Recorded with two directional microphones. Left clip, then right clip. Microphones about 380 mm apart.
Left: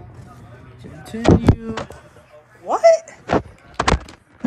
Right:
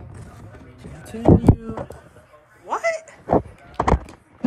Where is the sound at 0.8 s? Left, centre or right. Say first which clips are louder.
Left 2 dB; left.